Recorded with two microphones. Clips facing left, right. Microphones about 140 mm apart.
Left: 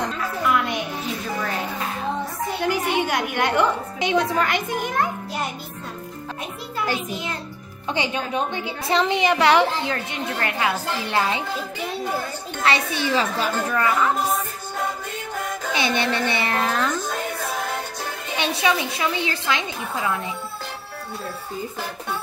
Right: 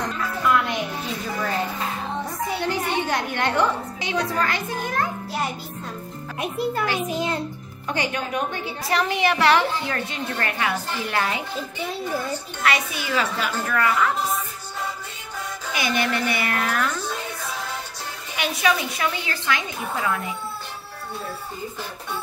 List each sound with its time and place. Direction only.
0.2 s music: 5° left (ahead or behind)
2.7 s a woman's voice: 10° left (ahead or behind)
7.9 s a woman's voice: 20° left (ahead or behind)
12.6 s a woman's voice: 30° left (ahead or behind)
15.7 s a woman's voice: 25° left (ahead or behind)
17.1 s music: 50° left (ahead or behind)
18.6 s a woman's voice: 25° left (ahead or behind)